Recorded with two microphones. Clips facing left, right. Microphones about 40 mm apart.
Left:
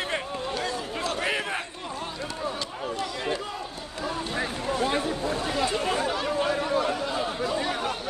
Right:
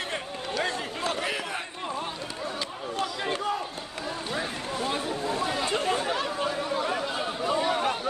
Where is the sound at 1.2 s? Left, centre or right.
Centre.